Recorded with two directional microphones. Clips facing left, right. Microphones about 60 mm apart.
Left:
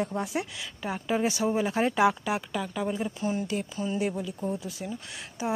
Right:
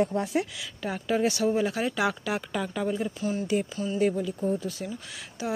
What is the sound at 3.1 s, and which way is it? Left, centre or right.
Speech, left.